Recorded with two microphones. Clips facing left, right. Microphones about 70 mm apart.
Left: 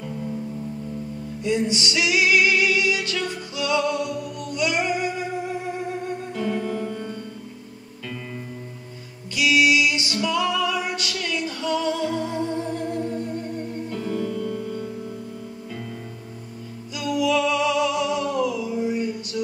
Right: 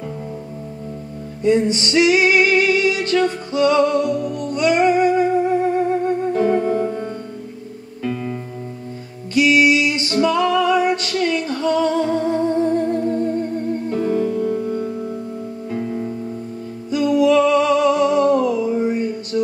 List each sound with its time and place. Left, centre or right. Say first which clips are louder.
1.4 s music: right 7 dB; right
6.6 s music: right 8 dB; right
9.3 s music: right 5 dB; right
16.9 s music: right 8 dB; right